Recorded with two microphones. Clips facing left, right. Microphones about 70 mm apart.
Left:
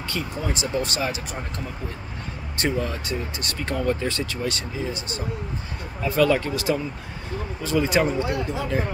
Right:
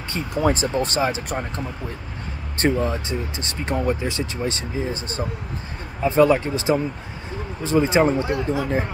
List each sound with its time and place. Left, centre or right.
0.2 s speech: right
2.5 s speech: right